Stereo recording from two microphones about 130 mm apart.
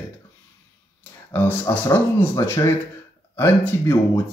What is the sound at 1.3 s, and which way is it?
Speech, 15° left (ahead or behind).